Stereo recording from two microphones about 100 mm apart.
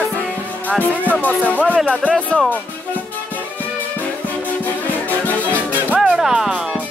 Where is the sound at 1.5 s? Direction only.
15° right (ahead or behind).